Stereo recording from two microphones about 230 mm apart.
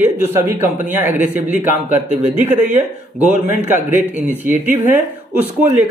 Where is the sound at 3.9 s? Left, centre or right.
Centre.